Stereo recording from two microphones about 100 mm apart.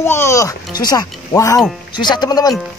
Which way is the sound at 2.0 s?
45° left (ahead or behind).